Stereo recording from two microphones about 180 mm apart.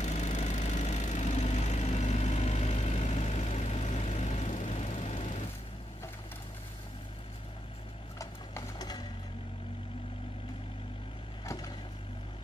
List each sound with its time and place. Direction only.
0.0 s vehicle: 40° left (ahead or behind)
8.2 s a sound: 20° left (ahead or behind)
11.4 s vehicle: 20° left (ahead or behind)